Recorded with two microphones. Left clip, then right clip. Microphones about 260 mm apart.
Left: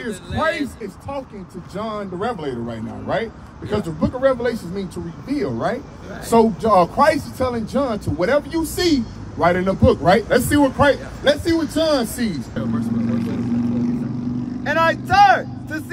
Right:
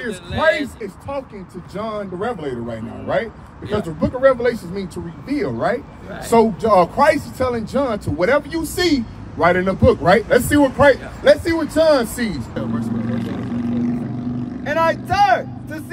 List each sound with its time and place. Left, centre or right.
1.8 s speech: centre
13.1 s vehicle: centre
14.6 s speech: centre